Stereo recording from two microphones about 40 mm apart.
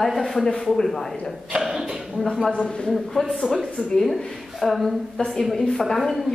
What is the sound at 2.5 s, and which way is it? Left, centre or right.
Speech, centre.